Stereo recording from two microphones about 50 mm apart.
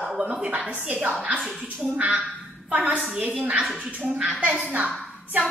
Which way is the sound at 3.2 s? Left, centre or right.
Right.